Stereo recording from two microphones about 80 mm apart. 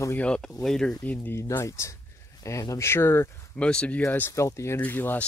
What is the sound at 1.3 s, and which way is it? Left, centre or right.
Speech, left.